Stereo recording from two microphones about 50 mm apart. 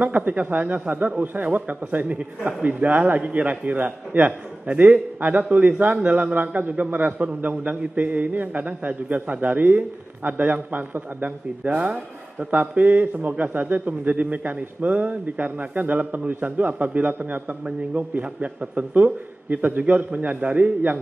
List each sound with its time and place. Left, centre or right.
0.0 s a man's voice: right